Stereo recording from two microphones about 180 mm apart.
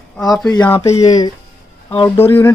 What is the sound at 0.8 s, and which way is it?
Speech, 40° left (ahead or behind).